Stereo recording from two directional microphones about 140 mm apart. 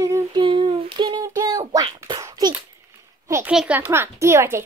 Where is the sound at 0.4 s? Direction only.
35° right (ahead or behind).